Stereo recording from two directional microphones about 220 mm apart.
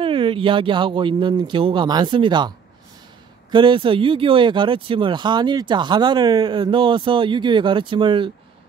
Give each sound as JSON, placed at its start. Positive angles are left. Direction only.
{"t": 0.0, "sound": "speech", "side_deg": -25}
{"t": 3.5, "sound": "speech", "side_deg": -20}